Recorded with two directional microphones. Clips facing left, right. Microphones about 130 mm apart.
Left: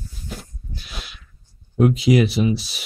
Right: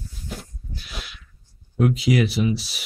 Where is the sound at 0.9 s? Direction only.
25° left (ahead or behind).